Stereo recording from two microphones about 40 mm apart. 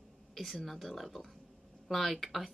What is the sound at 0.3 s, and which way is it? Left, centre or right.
Speech, centre.